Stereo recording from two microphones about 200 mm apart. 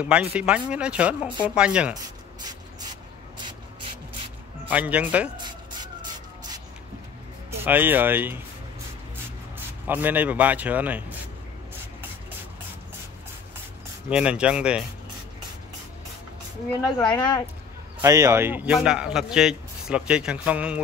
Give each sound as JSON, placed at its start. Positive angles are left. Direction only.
{"t": 0.0, "sound": "speech", "side_deg": -5}
{"t": 4.6, "sound": "a man's voice", "side_deg": -5}
{"t": 7.6, "sound": "a man's voice", "side_deg": -10}
{"t": 9.8, "sound": "a man's voice", "side_deg": -10}
{"t": 14.0, "sound": "speech", "side_deg": -5}
{"t": 16.8, "sound": "speech", "side_deg": 20}
{"t": 18.0, "sound": "a man's voice", "side_deg": -15}